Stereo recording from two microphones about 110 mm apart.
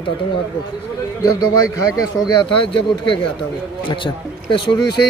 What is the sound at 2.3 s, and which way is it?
A man's voice, 45° left (ahead or behind).